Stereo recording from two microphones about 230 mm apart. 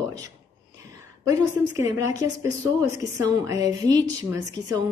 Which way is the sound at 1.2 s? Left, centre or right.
Centre.